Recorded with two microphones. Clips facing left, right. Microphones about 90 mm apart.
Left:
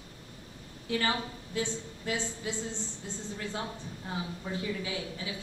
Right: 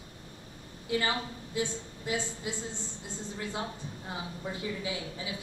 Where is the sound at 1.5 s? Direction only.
20° right (ahead or behind).